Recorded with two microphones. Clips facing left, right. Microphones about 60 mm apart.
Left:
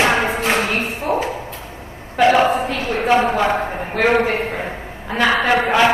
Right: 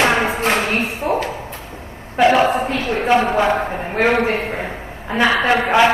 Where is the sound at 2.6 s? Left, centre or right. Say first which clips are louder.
Right 1 dB; right.